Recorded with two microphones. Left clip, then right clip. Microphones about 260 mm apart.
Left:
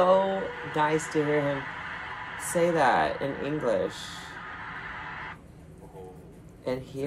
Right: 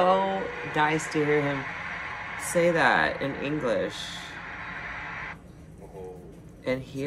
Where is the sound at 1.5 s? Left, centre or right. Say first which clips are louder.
Right 2 dB; right.